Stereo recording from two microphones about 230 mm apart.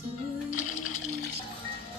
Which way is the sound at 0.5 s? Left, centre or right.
Left.